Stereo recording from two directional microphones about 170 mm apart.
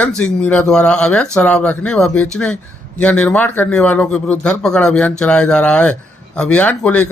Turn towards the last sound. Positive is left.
turn(degrees=10)  # may be behind; listen again after turning